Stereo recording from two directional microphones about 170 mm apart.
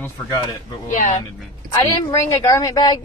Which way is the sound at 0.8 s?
45° left (ahead or behind).